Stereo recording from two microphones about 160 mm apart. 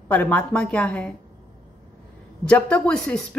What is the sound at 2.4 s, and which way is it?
Speech, 5° left (ahead or behind).